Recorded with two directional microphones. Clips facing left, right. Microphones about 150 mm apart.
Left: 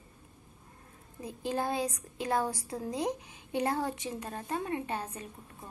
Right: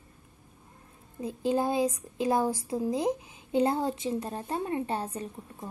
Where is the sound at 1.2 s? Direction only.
20° right (ahead or behind).